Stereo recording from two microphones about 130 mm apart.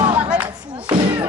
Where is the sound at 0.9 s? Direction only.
40° right (ahead or behind).